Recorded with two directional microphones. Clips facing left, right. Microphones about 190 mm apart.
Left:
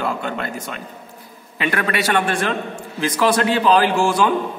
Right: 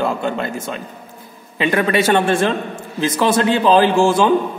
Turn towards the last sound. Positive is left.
turn(degrees=-25)  # may be behind; listen again after turning